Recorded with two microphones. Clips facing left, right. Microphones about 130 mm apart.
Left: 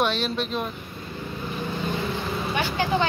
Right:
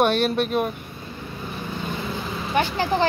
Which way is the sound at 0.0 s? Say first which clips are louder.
Right 5 dB; 55° right (ahead or behind).